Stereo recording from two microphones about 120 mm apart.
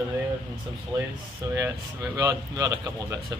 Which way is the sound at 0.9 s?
30° right (ahead or behind).